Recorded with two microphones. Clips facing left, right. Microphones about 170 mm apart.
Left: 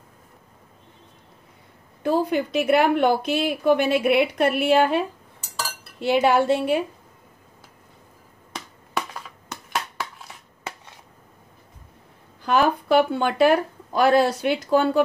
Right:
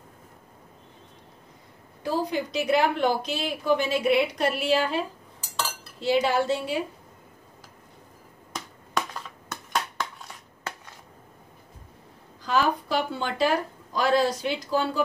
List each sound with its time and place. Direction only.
2.0 s a woman's voice: 55° left (ahead or behind)
8.5 s a sound: 5° left (ahead or behind)
12.4 s speech: 60° left (ahead or behind)